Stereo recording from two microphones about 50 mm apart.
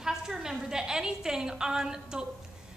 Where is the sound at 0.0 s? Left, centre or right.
Centre.